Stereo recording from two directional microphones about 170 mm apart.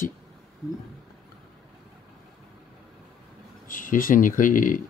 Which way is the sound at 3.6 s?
55° left (ahead or behind).